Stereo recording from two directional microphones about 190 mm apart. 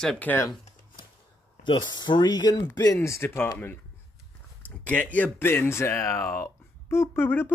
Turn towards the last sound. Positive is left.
turn(degrees=10)  # may be behind; listen again after turning